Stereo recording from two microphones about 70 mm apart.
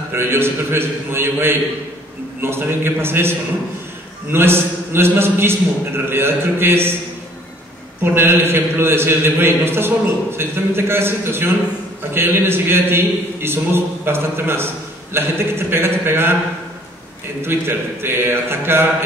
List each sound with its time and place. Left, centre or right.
0.1 s a man's voice: right
8.0 s a man's voice: right
17.4 s a man's voice: right